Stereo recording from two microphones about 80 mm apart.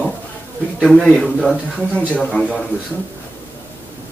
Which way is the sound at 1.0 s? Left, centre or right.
Centre.